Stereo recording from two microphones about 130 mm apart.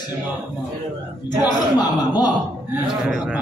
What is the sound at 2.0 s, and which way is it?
Speech, 30° left (ahead or behind).